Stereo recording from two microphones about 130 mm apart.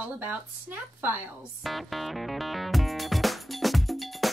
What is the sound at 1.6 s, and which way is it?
Music, centre (ahead or behind).